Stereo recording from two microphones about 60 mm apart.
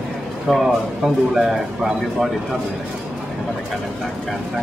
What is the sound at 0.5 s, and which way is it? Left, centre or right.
A man's voice, centre.